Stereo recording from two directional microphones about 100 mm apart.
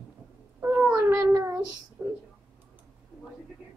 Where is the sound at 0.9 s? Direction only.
30° right (ahead or behind).